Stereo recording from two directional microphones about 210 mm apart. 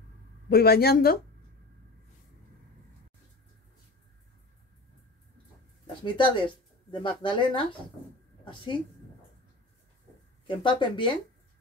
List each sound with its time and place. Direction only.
0.5 s speech: 50° left (ahead or behind)
6.0 s speech: 25° left (ahead or behind)
10.4 s speech: 25° left (ahead or behind)